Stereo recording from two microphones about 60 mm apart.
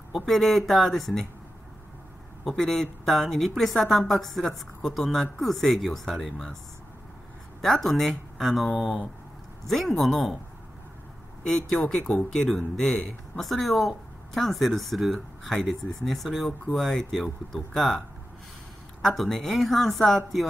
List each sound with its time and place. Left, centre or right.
0.1 s speech: centre
2.6 s speech: centre
7.6 s speech: centre
8.7 s speech: centre
9.7 s speech: centre
11.4 s speech: centre